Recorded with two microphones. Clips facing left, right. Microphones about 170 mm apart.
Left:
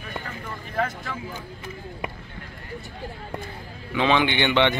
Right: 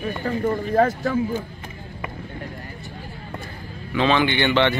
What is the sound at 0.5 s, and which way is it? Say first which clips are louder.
Speech: right 9 dB; 40° right (ahead or behind).